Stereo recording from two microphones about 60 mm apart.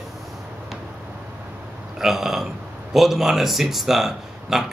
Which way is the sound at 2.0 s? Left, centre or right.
Centre.